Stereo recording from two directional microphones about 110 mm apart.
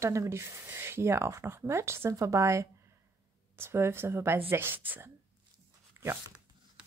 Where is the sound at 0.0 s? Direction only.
25° right (ahead or behind).